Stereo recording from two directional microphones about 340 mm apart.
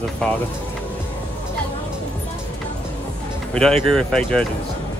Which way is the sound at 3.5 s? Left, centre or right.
Centre.